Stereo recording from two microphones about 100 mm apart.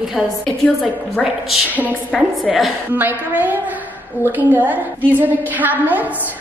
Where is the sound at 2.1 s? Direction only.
Centre (ahead or behind).